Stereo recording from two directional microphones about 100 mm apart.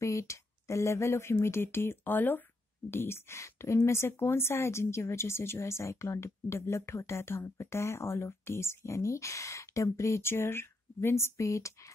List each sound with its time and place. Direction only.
0.0 s speech: 30° left (ahead or behind)